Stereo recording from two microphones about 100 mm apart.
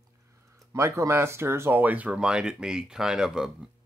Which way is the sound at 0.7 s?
30° right (ahead or behind).